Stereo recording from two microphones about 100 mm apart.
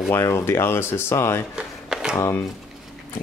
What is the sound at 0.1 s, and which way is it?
Speech, 25° left (ahead or behind).